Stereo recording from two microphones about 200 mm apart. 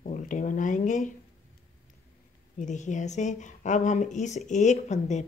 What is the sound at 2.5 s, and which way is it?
Speech, 35° left (ahead or behind).